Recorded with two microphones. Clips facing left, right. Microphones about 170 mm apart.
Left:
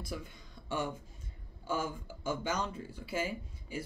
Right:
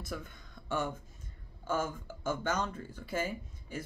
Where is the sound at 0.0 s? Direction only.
50° right (ahead or behind).